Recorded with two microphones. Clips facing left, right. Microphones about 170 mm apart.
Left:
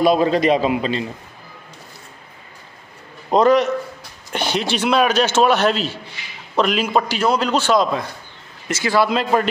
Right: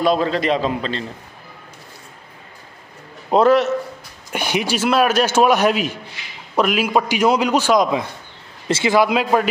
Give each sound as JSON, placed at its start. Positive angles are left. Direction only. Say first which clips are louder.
{"t": 0.0, "sound": "a man's voice", "louder": "left 3 dB", "side_deg": 15}
{"t": 3.3, "sound": "a man's voice", "louder": "even", "side_deg": -5}
{"t": 8.6, "sound": "a man's voice", "louder": "right 2 dB", "side_deg": -25}